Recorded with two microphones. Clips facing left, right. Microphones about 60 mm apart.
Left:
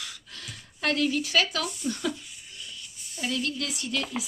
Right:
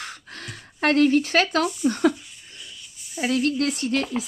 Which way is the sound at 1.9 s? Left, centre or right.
Right.